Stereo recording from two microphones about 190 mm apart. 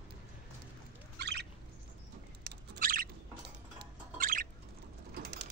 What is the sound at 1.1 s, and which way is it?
Turkey, 60° right (ahead or behind).